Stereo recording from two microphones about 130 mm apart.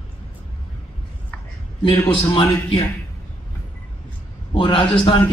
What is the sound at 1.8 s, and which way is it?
Speech, 40° left (ahead or behind).